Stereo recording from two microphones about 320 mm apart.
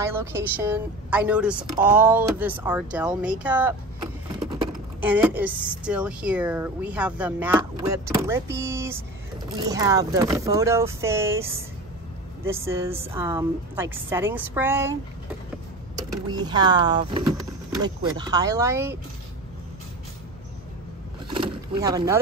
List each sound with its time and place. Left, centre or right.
0.0 s a woman's voice: centre
5.0 s a woman's voice: centre
16.0 s a woman's voice: centre
21.3 s vehicle: centre